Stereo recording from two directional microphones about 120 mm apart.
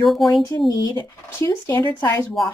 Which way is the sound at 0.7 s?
30° left (ahead or behind).